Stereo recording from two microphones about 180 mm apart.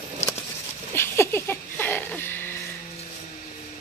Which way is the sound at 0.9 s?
15° left (ahead or behind).